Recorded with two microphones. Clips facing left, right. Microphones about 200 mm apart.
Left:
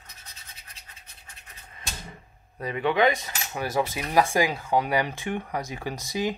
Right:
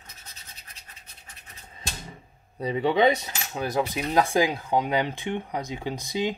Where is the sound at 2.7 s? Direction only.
30° right (ahead or behind).